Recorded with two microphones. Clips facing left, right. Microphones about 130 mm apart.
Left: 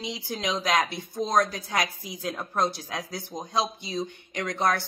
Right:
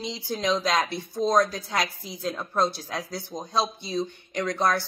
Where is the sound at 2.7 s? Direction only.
55° left (ahead or behind).